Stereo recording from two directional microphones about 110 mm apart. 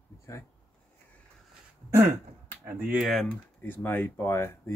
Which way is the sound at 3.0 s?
Centre (ahead or behind).